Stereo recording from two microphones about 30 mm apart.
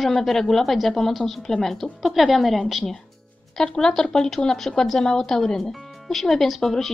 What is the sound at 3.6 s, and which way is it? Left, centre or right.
A woman's voice, left.